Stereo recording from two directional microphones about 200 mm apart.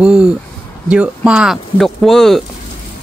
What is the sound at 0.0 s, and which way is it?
Speech, 5° right (ahead or behind).